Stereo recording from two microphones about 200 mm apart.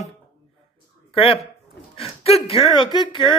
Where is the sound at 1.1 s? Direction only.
25° left (ahead or behind).